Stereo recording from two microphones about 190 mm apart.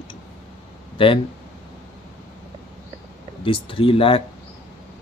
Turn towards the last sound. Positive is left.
turn(degrees=30)  # may be behind; listen again after turning